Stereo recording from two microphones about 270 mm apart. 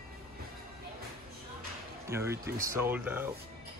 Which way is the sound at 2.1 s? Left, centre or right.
Centre.